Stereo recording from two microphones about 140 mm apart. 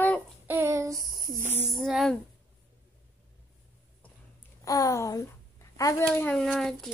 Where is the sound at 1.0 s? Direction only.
90° right.